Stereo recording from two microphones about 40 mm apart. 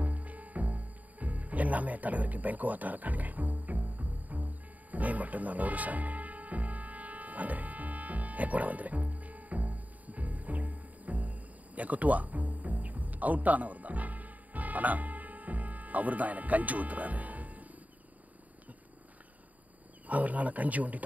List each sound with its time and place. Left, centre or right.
0.0 s music: right
20.1 s speech: right